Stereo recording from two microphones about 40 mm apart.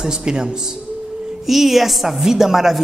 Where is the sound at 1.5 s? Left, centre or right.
Centre.